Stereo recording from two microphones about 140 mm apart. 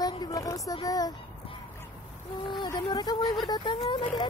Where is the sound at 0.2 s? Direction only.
25° left (ahead or behind).